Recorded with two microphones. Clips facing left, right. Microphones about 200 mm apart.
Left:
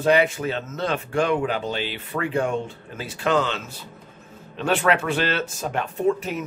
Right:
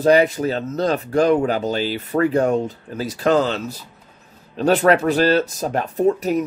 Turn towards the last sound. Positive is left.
turn(degrees=-40)  # may be behind; listen again after turning